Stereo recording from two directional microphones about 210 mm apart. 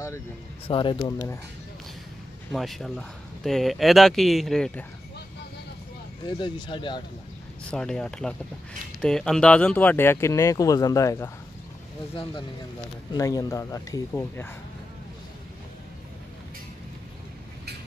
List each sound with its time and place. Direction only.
0.7 s speech: 25° left (ahead or behind)
2.5 s speech: centre (ahead or behind)
6.2 s speech: 20° left (ahead or behind)
7.7 s speech: 5° left (ahead or behind)
13.1 s speech: 15° left (ahead or behind)